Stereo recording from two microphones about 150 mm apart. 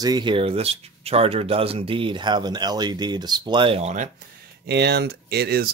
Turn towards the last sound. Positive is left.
turn(degrees=-90)